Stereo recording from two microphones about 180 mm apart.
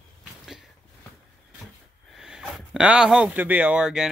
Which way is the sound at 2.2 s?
5° right (ahead or behind).